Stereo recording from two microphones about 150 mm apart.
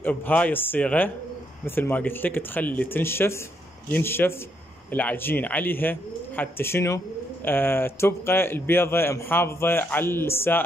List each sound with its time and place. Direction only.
0.0 s speech: 10° left (ahead or behind)